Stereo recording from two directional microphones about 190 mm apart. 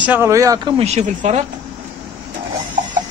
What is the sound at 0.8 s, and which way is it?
Speech, 35° right (ahead or behind).